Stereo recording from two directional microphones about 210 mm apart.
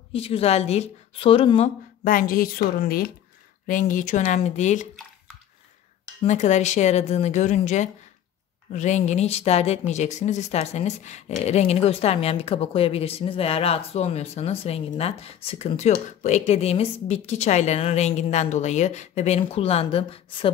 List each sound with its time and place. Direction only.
0.1 s a woman's voice: 25° left (ahead or behind)
2.0 s a woman's voice: 40° left (ahead or behind)
6.2 s speech: 35° left (ahead or behind)